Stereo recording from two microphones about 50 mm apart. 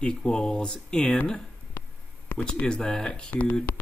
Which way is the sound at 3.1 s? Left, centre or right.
Left.